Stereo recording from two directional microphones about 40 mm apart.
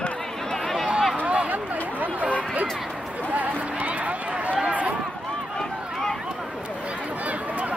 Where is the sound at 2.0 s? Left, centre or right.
Right.